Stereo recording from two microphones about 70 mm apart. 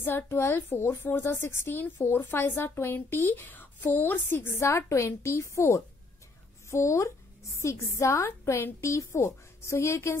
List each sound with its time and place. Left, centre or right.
0.0 s a woman's voice: left